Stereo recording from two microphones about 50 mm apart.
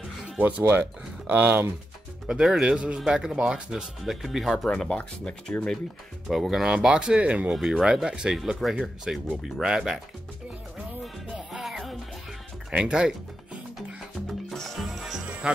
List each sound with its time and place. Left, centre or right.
0.4 s speech: right
2.2 s speech: centre
2.6 s speech: centre
4.0 s speech: centre
4.6 s speech: centre
4.9 s speech: left
6.2 s speech: centre
6.7 s speech: centre
7.8 s speech: centre
8.6 s speech: centre
9.1 s speech: centre
12.7 s speech: centre
14.2 s music: centre
15.4 s speech: centre